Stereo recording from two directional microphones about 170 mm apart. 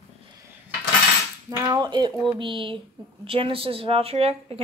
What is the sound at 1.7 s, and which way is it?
Speech, 25° right (ahead or behind).